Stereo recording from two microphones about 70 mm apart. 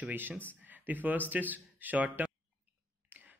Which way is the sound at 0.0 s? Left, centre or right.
Right.